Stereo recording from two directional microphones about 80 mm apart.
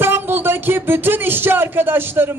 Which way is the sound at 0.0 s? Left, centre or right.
Right.